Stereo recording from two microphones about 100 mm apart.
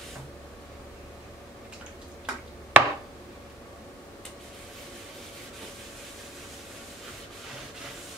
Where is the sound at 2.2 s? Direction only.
15° right (ahead or behind).